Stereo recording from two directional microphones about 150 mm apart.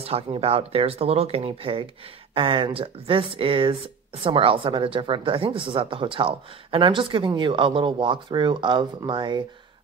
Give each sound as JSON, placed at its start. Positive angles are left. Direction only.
{"t": 0.0, "sound": "speech", "side_deg": -40}